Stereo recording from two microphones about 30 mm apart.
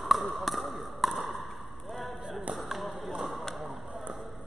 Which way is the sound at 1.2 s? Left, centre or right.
Centre.